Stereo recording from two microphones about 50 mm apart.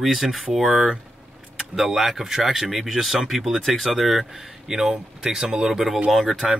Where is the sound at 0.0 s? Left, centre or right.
Centre.